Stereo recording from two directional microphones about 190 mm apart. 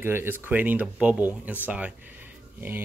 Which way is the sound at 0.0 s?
10° right (ahead or behind).